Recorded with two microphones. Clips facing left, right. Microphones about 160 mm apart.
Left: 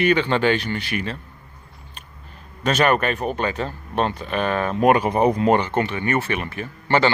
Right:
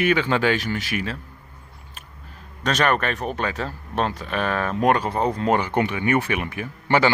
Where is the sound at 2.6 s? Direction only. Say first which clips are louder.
Left 3 dB; 5° left (ahead or behind).